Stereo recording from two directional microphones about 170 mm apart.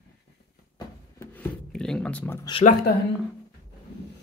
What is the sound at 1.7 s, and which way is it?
Speech, 5° left (ahead or behind).